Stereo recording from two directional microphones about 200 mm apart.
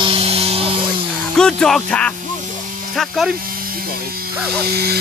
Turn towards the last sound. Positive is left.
turn(degrees=-50)  # may be behind; listen again after turning